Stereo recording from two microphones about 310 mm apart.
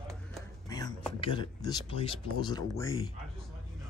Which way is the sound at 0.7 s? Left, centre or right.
Centre.